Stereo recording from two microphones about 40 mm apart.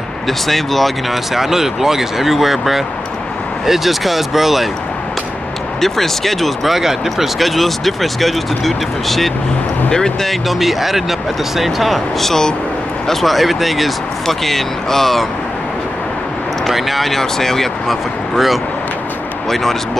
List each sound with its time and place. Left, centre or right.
0.3 s speech: centre
5.8 s speech: centre
7.4 s speech: centre
9.8 s speech: centre
10.2 s speech: centre
16.7 s speech: centre